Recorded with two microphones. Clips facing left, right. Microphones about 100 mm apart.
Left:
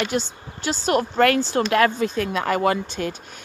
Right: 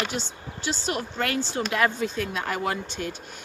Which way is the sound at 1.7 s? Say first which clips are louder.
Left 5 dB; 75° left (ahead or behind).